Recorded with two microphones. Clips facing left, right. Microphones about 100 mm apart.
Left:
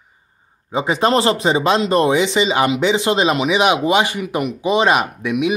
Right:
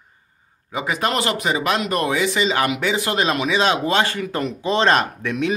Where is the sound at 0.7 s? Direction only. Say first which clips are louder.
Left 6 dB; 25° left (ahead or behind).